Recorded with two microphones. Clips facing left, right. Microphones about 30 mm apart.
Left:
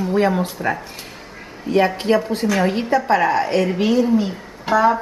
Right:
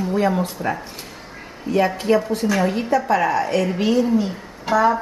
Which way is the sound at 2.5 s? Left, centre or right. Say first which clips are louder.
Left 2 dB; left.